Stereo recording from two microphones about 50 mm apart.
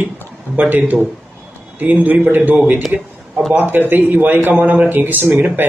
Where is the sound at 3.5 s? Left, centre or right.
Right.